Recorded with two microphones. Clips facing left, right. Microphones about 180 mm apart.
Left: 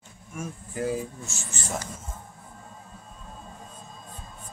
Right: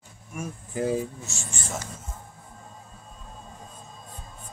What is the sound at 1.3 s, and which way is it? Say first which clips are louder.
Speech: right 1 dB; centre (ahead or behind).